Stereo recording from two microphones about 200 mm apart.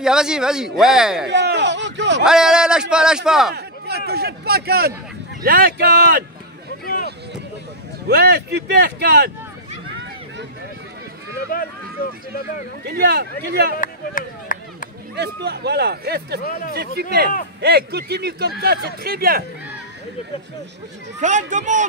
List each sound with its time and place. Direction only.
0.0 s speech: 5° right (ahead or behind)
1.3 s a sound: 60° right (ahead or behind)
2.2 s speech: 5° right (ahead or behind)
3.5 s a sound: 55° right (ahead or behind)
4.1 s speech: 50° right (ahead or behind)
8.1 s speech: 50° right (ahead or behind)
12.8 s speech: 55° right (ahead or behind)
13.7 s speech: 40° left (ahead or behind)
15.1 s speech: 55° right (ahead or behind)
21.2 s speech: 35° right (ahead or behind)